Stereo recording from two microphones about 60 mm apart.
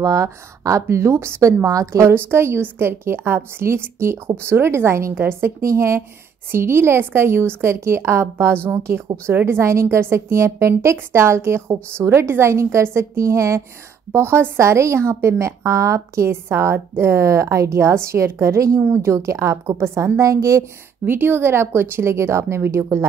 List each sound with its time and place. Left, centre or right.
0.0 s a woman's voice: right
2.1 s a woman's voice: right
16.4 s a woman's voice: right
21.0 s a woman's voice: right